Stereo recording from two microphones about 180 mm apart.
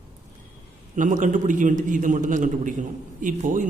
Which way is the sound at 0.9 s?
45° right (ahead or behind).